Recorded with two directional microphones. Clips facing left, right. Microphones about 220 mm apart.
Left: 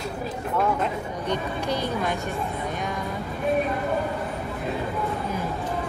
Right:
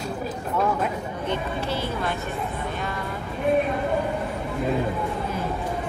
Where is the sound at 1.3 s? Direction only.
15° left (ahead or behind).